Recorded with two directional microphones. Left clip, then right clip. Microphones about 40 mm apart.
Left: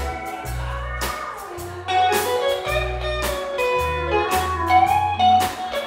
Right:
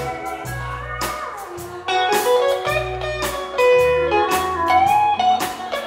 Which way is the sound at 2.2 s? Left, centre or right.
Centre.